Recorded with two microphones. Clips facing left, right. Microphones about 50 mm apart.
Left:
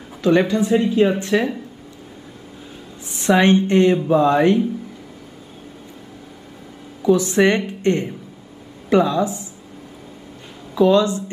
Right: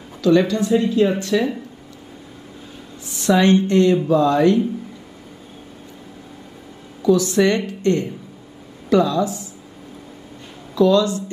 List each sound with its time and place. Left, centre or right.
0.2 s speech: left
3.2 s speech: left
7.0 s a woman's voice: left
10.7 s speech: left